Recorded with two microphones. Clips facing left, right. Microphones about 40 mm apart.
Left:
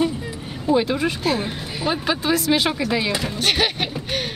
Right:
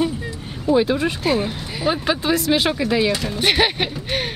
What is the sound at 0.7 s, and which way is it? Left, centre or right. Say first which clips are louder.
Speech: right 2 dB; centre.